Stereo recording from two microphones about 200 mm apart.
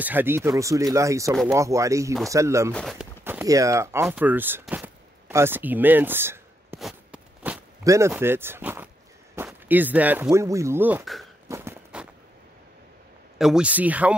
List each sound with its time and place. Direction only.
0.0 s speech: 10° right (ahead or behind)
2.7 s speech: centre (ahead or behind)
3.3 s speech: 15° right (ahead or behind)
6.8 s a sound: 5° right (ahead or behind)
9.5 s speech: 10° right (ahead or behind)
11.4 s walk: 10° right (ahead or behind)
13.4 s speech: 5° right (ahead or behind)